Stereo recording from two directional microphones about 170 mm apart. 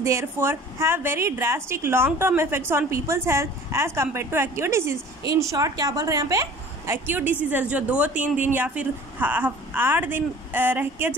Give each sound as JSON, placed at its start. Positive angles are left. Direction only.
{"t": 0.0, "sound": "a woman's voice", "side_deg": -15}